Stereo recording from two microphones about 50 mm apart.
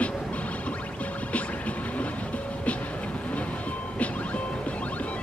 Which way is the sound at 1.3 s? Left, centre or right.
Left.